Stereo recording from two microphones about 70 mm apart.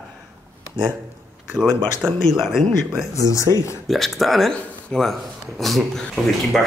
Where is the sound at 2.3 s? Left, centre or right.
Centre.